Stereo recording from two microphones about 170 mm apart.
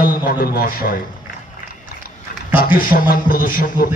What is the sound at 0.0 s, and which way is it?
Speech, 55° left (ahead or behind).